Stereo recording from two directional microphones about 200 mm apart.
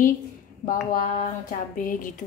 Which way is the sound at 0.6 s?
40° left (ahead or behind).